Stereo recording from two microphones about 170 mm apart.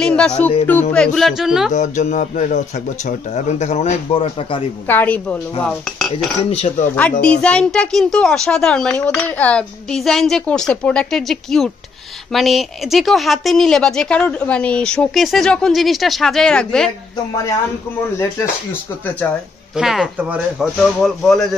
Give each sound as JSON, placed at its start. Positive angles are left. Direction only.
{"t": 0.0, "sound": "a woman's voice", "side_deg": 5}
{"t": 1.7, "sound": "speech", "side_deg": 45}
{"t": 4.8, "sound": "speech", "side_deg": 10}
{"t": 6.5, "sound": "speech", "side_deg": 35}
{"t": 7.0, "sound": "a woman's voice", "side_deg": 5}
{"t": 18.4, "sound": "speech", "side_deg": 10}
{"t": 19.7, "sound": "a woman's voice", "side_deg": 0}